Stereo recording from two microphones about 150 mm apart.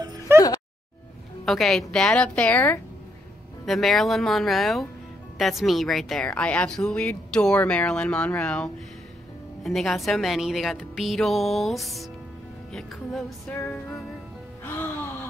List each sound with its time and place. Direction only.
0.0 s music: 25° right (ahead or behind)
1.4 s a woman's voice: centre (ahead or behind)
13.5 s speech: 15° left (ahead or behind)
14.6 s music: 15° left (ahead or behind)